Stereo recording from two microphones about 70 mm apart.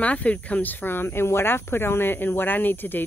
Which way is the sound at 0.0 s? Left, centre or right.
Centre.